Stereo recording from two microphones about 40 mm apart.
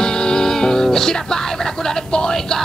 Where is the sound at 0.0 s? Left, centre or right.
Centre.